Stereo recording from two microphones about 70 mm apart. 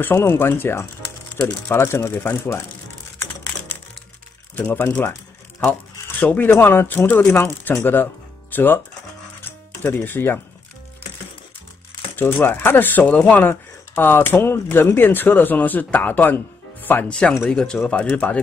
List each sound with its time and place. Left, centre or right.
0.0 s speech: left
4.6 s speech: left
5.7 s a sound: left
6.6 s speech: left
9.4 s music: left
12.2 s speech: left
17.5 s speech: centre